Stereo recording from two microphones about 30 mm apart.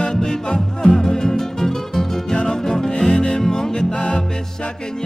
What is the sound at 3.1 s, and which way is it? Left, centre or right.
Music, left.